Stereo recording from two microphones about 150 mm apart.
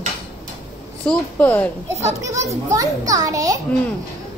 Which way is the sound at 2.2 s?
20° right (ahead or behind).